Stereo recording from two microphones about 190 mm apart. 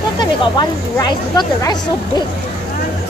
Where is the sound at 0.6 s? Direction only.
25° left (ahead or behind).